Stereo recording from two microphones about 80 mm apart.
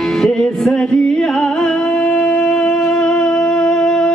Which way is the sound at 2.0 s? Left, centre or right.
Centre.